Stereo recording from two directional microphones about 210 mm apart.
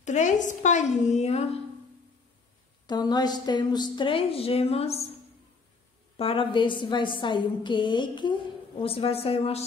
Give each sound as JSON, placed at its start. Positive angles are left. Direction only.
{"t": 0.0, "sound": "a woman's voice", "side_deg": 35}
{"t": 2.9, "sound": "a woman's voice", "side_deg": 20}
{"t": 6.1, "sound": "a woman's voice", "side_deg": 25}